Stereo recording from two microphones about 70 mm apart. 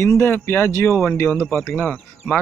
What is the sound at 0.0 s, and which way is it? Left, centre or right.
Speech, left.